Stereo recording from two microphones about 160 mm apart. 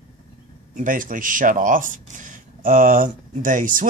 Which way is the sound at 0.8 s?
55° right (ahead or behind).